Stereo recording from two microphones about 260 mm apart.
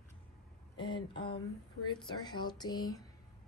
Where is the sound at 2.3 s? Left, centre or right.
Centre.